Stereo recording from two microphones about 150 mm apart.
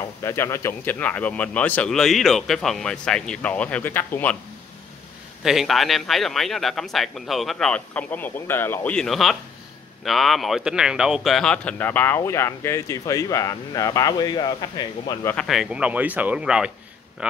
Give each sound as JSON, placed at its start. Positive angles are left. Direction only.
{"t": 0.2, "sound": "speech", "side_deg": 20}
{"t": 5.4, "sound": "a man's voice", "side_deg": 0}
{"t": 8.9, "sound": "a man's voice", "side_deg": 0}
{"t": 15.3, "sound": "speech", "side_deg": 0}